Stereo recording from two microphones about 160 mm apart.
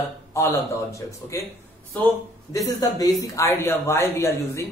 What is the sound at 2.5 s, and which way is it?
Speech, 25° left (ahead or behind).